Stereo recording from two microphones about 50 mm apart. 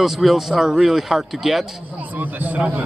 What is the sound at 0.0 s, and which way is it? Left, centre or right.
Speech, centre.